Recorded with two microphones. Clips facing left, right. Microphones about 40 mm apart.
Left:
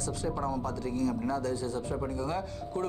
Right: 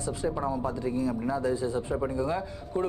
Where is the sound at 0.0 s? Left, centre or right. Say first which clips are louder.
Right 3 dB; centre.